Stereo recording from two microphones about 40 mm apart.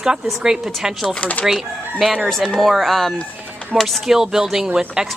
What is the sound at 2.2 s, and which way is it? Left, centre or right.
Speech, centre.